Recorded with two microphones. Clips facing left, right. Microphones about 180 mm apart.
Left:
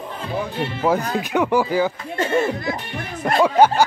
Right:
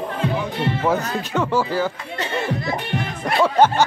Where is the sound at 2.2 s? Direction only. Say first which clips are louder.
Left 4 dB; 50° left (ahead or behind).